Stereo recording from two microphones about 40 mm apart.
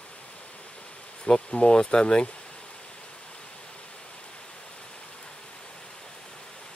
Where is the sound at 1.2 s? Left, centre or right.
Left.